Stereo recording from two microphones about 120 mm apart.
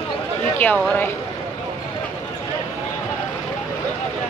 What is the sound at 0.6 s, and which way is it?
Speech, 15° left (ahead or behind).